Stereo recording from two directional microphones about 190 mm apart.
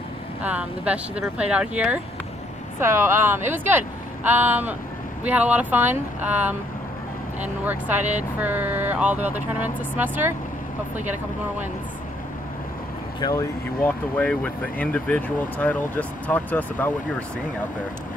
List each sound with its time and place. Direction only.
0.4 s speech: 5° right (ahead or behind)
7.6 s speech: 10° right (ahead or behind)
8.0 s speech: 40° right (ahead or behind)
8.4 s speech: 10° right (ahead or behind)
13.2 s speech: 15° left (ahead or behind)